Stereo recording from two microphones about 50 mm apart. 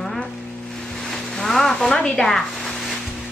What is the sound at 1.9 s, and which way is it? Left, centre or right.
Speech, centre.